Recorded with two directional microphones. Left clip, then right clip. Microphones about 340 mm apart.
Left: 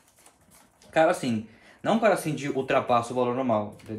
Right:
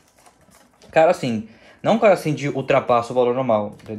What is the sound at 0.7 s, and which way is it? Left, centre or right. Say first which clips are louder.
Speech: right 7 dB; right.